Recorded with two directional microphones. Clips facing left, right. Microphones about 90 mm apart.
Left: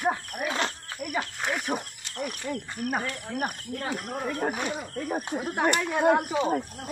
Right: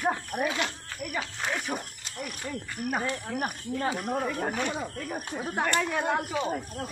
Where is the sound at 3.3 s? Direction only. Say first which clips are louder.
Even; centre (ahead or behind).